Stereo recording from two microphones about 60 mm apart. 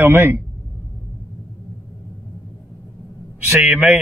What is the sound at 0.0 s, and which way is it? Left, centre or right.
Speech, right.